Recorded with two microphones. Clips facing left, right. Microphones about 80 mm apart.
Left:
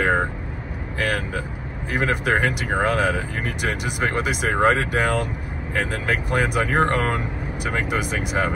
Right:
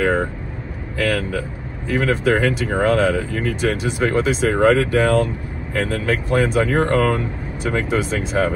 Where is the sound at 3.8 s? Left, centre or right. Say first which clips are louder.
Right 4 dB; left.